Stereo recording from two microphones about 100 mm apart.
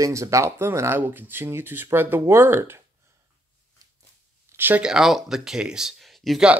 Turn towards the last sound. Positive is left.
turn(degrees=0)  # may be behind; listen again after turning